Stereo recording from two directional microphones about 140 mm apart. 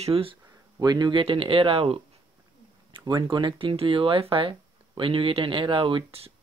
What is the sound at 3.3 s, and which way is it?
Speech, 35° right (ahead or behind).